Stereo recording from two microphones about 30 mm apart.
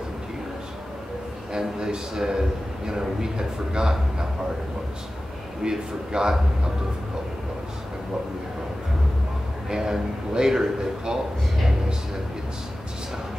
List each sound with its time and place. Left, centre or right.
1.9 s a man's voice: right
5.6 s a man's voice: right
9.7 s a man's voice: centre